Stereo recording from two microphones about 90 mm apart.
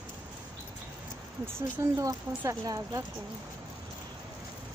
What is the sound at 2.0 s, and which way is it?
Speech, 40° right (ahead or behind).